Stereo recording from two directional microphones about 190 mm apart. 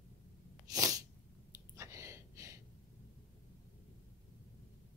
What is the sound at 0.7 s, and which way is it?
Sneeze, 15° right (ahead or behind).